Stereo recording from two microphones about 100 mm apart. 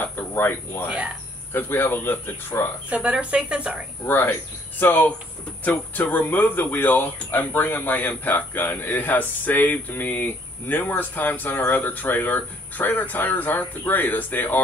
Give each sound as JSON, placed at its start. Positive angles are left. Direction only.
{"t": 0.0, "sound": "speech", "side_deg": 25}
{"t": 0.8, "sound": "speech", "side_deg": -10}
{"t": 1.5, "sound": "speech", "side_deg": 20}
{"t": 2.9, "sound": "speech", "side_deg": -10}
{"t": 4.0, "sound": "speech", "side_deg": 20}